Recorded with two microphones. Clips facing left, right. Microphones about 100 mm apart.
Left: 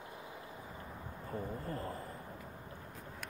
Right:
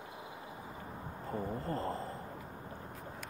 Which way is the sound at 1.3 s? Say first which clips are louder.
Right 4 dB; 25° right (ahead or behind).